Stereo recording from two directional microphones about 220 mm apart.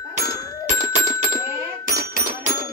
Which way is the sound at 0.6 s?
35° right (ahead or behind).